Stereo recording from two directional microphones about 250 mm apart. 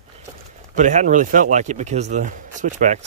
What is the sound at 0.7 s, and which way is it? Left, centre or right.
A man's voice, right.